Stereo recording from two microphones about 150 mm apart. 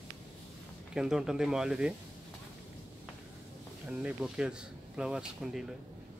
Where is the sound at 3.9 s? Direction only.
5° right (ahead or behind).